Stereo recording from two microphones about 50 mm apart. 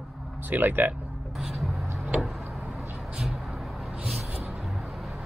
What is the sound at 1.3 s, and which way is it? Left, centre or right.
Vehicle, centre.